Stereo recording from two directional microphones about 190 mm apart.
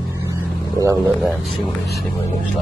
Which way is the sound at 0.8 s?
20° right (ahead or behind).